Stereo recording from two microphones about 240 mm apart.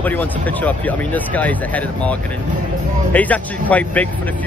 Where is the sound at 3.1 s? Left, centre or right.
Centre.